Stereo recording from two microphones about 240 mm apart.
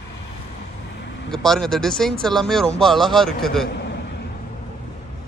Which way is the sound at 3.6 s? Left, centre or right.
Left.